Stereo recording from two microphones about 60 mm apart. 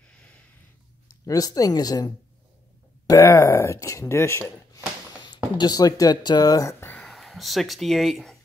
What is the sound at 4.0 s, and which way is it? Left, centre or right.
Speech, left.